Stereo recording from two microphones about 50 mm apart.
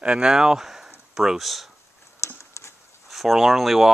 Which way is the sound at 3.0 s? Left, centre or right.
Centre.